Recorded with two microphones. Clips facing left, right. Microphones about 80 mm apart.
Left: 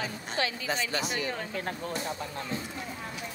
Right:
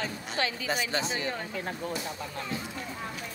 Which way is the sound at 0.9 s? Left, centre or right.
Right.